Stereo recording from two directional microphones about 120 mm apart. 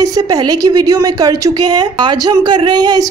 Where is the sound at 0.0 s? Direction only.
30° right (ahead or behind).